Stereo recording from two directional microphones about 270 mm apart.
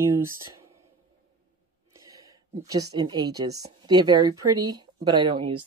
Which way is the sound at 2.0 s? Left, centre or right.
Centre.